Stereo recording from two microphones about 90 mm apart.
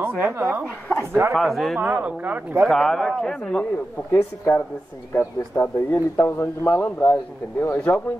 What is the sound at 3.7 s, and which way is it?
A man's voice, 30° left (ahead or behind).